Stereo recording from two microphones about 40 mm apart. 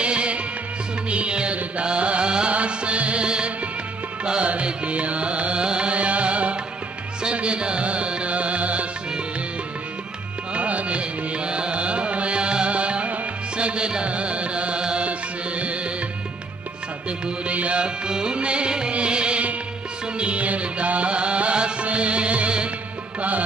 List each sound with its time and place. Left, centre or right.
0.0 s music of bollywood: right
1.1 s music: right
10.5 s music: right
17.5 s music: right